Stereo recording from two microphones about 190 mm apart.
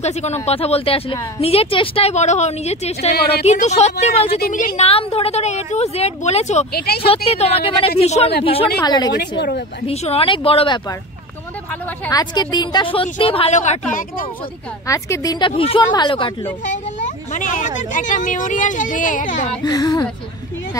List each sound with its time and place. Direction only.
0.0 s a woman's voice: 35° left (ahead or behind)
6.7 s speech: 55° left (ahead or behind)
7.2 s a woman's voice: 35° left (ahead or behind)
8.8 s a woman's voice: 20° left (ahead or behind)
12.1 s a woman's voice: 20° left (ahead or behind); by 14.3 s 45° left (ahead or behind)
14.9 s a woman's voice: 15° left (ahead or behind)
17.3 s speech: 40° left (ahead or behind)
19.6 s a woman's voice: 20° left (ahead or behind)